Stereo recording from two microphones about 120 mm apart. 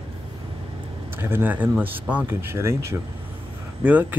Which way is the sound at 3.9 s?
15° right (ahead or behind).